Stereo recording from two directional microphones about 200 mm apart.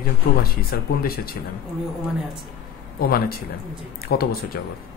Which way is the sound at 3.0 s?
50° left (ahead or behind).